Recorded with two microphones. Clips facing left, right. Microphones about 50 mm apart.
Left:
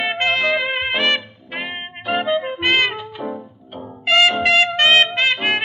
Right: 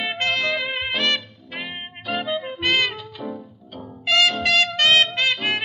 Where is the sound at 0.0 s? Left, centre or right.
Left.